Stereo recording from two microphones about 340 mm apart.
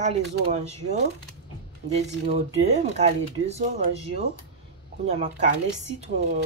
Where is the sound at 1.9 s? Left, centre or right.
Centre.